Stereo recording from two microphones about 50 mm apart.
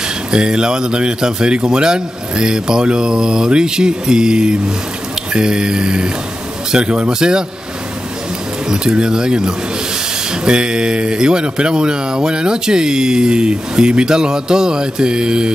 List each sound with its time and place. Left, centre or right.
0.3 s speech: centre
8.6 s speech: centre